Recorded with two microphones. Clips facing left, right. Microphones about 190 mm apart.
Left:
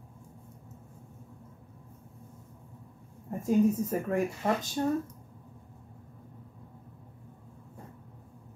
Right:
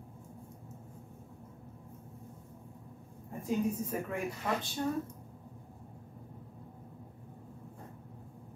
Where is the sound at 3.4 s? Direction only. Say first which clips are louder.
Left 7 dB; 45° left (ahead or behind).